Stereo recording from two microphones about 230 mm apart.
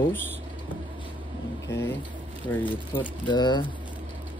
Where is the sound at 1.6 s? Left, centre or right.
Centre.